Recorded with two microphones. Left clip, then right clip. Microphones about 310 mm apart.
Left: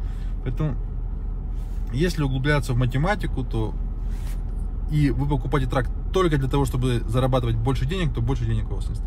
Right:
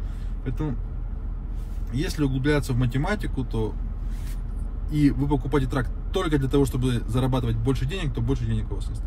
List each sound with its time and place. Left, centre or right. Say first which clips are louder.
1.9 s a man's voice: left 2 dB; centre
4.8 s a man's voice: right 2 dB; centre